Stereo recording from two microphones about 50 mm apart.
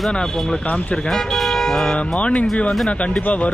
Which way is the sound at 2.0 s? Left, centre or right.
Left.